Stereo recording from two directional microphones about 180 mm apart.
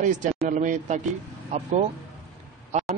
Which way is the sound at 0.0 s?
45° right (ahead or behind).